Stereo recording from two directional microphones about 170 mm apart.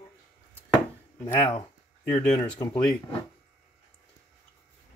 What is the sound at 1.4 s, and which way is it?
Speech, 30° left (ahead or behind).